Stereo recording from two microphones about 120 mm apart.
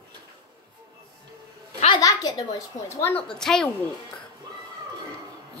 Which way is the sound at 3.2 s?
5° left (ahead or behind).